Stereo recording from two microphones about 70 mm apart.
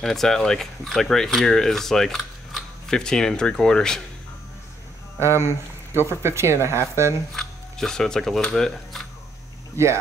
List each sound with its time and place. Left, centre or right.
0.0 s speech: centre
5.2 s speech: right
7.3 s speech: centre